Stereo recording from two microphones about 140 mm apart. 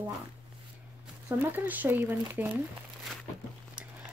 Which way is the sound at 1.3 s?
15° right (ahead or behind).